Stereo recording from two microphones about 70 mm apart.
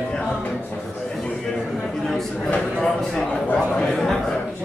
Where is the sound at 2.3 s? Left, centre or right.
Centre.